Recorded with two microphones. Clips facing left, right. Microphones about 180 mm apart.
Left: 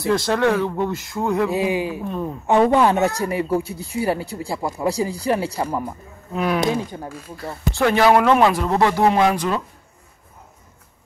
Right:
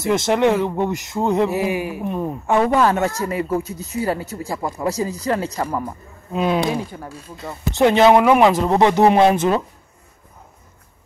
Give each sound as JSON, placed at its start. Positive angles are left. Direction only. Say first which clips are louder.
{"t": 0.0, "sound": "speech", "louder": "right 2 dB", "side_deg": -20}
{"t": 1.5, "sound": "speech", "louder": "even", "side_deg": 15}
{"t": 2.0, "sound": "a woman's voice", "louder": "right 2 dB", "side_deg": -15}
{"t": 2.4, "sound": "speech", "louder": "left 1 dB", "side_deg": 20}
{"t": 6.3, "sound": "speech", "louder": "right 1 dB", "side_deg": -20}